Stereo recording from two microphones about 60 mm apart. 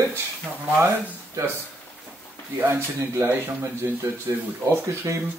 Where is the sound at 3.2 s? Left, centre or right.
Right.